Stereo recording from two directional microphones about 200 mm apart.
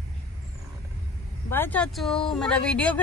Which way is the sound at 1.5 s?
10° left (ahead or behind).